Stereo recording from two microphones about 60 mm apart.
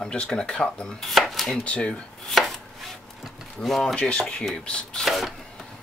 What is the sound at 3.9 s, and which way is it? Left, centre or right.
Speech, centre.